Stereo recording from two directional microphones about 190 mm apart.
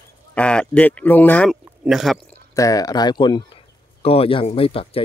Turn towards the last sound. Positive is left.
turn(degrees=30)  # may be behind; listen again after turning